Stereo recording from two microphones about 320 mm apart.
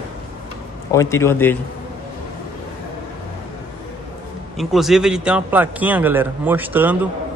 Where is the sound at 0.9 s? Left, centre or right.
Centre.